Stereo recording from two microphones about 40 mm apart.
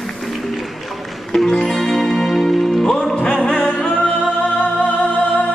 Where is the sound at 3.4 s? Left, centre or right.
Left.